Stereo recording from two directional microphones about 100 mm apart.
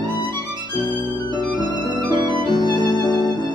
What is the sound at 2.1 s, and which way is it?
Music, 50° right (ahead or behind).